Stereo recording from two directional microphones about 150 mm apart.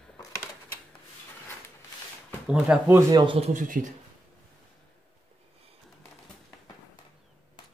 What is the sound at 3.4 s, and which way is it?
Speech, 55° right (ahead or behind).